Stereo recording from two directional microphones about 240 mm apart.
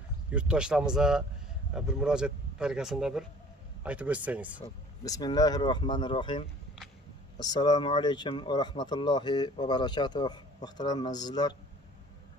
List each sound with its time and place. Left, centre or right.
0.3 s speech: centre
4.6 s speech: centre